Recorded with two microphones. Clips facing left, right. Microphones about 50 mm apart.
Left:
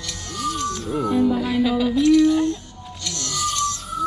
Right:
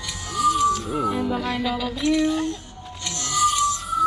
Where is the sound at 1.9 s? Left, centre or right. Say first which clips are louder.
Left 6 dB; right.